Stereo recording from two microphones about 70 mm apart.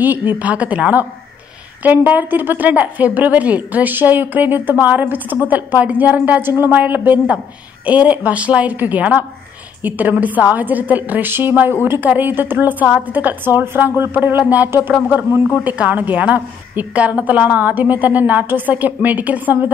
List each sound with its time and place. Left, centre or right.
0.0 s a woman's voice: right